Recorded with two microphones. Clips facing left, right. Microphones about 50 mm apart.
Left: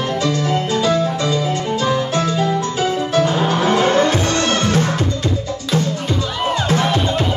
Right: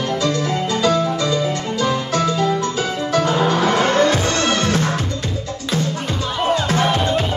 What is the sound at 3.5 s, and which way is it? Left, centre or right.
Music, centre.